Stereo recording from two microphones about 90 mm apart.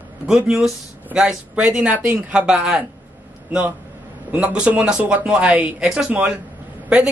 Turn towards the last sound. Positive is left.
turn(degrees=-10)  # may be behind; listen again after turning